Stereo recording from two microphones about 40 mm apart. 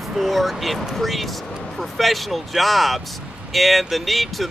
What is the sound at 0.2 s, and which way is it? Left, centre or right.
Speech, centre.